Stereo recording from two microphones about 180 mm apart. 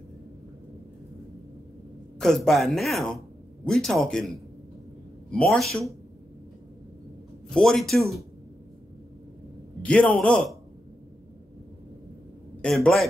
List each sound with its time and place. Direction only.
2.1 s speech: centre (ahead or behind)
7.4 s speech: 5° left (ahead or behind)
9.8 s a man's voice: 5° left (ahead or behind)
12.6 s speech: 5° left (ahead or behind)